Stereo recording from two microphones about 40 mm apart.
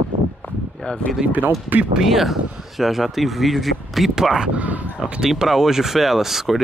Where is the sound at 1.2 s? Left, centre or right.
Right.